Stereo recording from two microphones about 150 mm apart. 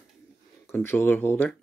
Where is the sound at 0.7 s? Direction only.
15° left (ahead or behind).